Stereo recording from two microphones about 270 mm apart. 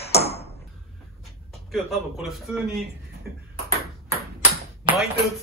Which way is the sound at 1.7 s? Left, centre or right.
Centre.